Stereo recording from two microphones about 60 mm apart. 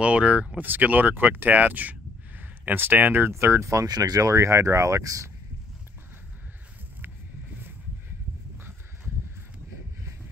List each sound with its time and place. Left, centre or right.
0.0 s speech: centre; by 3.8 s right
3.8 s speech: right